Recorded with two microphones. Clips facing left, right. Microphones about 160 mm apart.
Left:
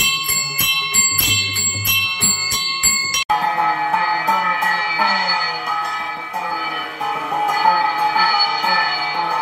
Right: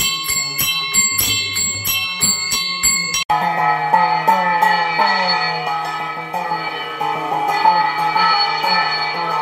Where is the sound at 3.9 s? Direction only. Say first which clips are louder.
Right 4 dB; 45° right (ahead or behind).